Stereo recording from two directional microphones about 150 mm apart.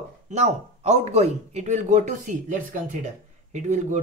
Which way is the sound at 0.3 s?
50° right (ahead or behind).